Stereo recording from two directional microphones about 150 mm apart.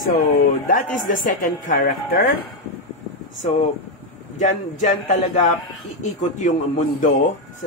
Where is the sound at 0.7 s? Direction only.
65° left (ahead or behind).